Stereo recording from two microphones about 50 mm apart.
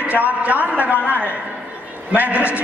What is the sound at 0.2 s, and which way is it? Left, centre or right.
A man's voice, right.